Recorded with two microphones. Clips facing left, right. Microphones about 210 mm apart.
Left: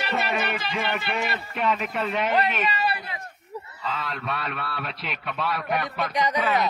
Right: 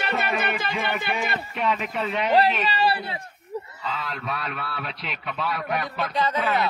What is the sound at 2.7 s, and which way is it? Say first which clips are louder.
Speech: right 4 dB; 30° right (ahead or behind).